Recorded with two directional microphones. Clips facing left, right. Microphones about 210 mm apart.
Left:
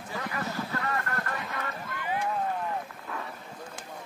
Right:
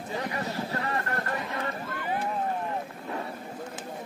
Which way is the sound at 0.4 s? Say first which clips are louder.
Right 2 dB; 30° right (ahead or behind).